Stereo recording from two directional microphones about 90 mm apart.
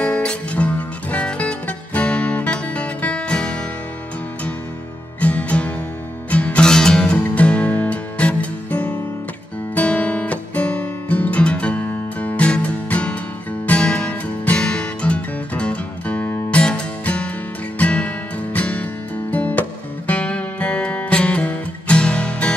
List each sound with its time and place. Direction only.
0.0 s music: 10° left (ahead or behind)
5.2 s music: 15° left (ahead or behind)
9.8 s guitar: 15° left (ahead or behind)
13.7 s music: 10° left (ahead or behind)